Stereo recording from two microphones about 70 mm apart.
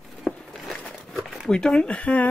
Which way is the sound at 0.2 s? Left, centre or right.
Centre.